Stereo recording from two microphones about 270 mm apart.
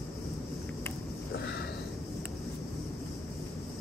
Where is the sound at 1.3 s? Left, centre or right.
Left.